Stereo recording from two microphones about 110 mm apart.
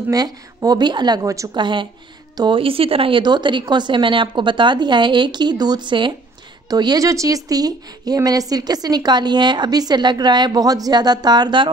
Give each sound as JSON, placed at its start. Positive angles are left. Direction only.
{"t": 0.1, "sound": "a woman's voice", "side_deg": -35}
{"t": 1.6, "sound": "a woman's voice", "side_deg": -45}